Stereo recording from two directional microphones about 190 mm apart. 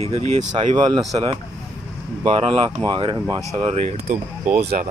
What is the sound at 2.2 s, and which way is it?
Speech, 25° right (ahead or behind).